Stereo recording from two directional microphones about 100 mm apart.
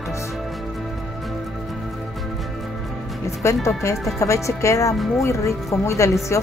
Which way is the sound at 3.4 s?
30° left (ahead or behind).